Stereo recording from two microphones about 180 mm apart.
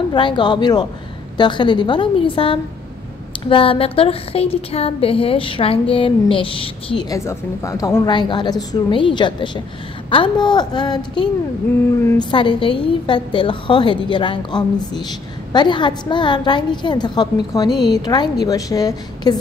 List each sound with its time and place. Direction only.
0.1 s speech: 25° left (ahead or behind)